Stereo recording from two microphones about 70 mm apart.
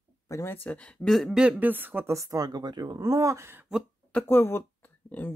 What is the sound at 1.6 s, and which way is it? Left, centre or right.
Speech, right.